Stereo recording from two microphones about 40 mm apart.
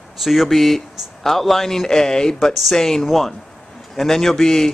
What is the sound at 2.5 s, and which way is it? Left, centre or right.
Speech, centre.